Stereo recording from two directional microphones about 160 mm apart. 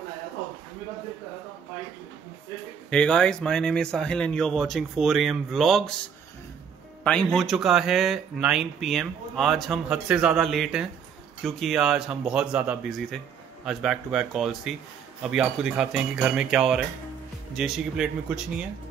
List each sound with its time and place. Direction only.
2.9 s speech: 5° left (ahead or behind)
7.1 s speech: 5° left (ahead or behind)